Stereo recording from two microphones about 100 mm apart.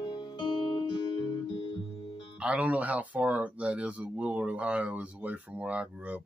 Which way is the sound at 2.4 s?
10° right (ahead or behind).